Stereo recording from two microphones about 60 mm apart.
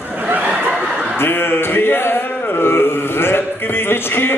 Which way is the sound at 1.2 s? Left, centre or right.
Left.